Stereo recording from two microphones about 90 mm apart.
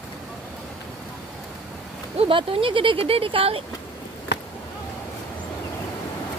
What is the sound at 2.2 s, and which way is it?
Speech, 85° right.